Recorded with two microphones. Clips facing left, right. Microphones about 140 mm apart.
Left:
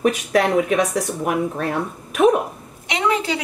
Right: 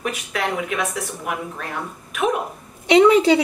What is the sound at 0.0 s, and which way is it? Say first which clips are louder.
Speech: left 8 dB; 40° left (ahead or behind).